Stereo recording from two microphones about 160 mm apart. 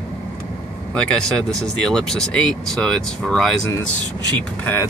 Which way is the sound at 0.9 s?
5° left (ahead or behind).